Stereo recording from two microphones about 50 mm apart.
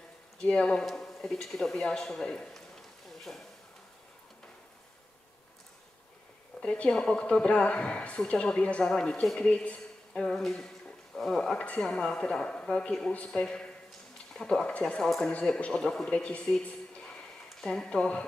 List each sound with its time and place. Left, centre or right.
0.4 s a man's voice: centre
6.6 s a woman's voice: left
10.1 s a man's voice: centre
11.5 s a man's voice: centre
16.1 s speech: left
17.1 s a sound: centre
17.8 s speech: left